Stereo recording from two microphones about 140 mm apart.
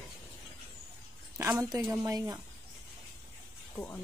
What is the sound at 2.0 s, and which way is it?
Speech, 25° right (ahead or behind).